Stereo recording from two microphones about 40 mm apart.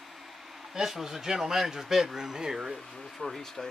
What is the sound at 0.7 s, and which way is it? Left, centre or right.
Speech, centre.